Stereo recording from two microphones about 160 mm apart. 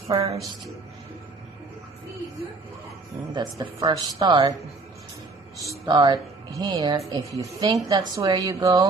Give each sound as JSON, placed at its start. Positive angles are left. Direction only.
{"t": 0.1, "sound": "a woman's voice", "side_deg": -20}
{"t": 3.3, "sound": "a woman's voice", "side_deg": -25}
{"t": 5.6, "sound": "a woman's voice", "side_deg": -25}